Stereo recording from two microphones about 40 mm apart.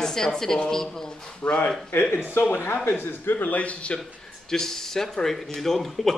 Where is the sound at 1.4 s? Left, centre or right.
Left.